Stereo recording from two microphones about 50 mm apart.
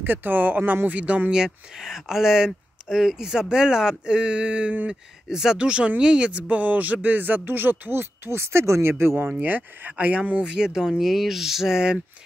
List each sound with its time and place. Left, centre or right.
0.0 s speech: right
1.3 s speech: centre; by 9.4 s right
9.4 s speech: right
10.4 s speech: centre